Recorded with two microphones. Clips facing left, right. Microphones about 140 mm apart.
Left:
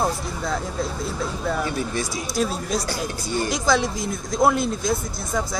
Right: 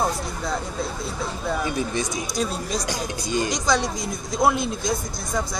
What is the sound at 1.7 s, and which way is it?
Speech, 20° right (ahead or behind).